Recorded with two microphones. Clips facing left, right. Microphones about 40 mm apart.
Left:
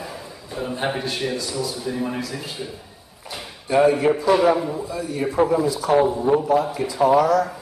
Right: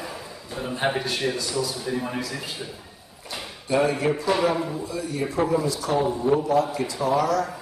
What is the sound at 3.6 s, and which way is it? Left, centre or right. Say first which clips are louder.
A man's voice: left 5 dB; centre.